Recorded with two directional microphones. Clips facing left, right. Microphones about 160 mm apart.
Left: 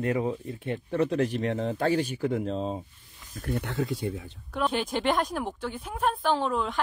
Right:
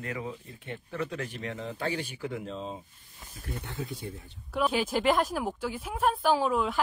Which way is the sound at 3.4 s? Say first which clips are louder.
Left 8 dB; 65° left (ahead or behind).